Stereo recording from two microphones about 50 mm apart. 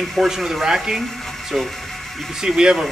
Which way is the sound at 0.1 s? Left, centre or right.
Centre.